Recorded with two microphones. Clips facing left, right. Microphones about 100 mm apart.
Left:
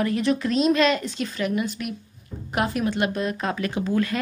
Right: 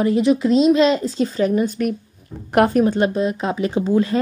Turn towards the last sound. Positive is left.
turn(degrees=-25)  # may be behind; listen again after turning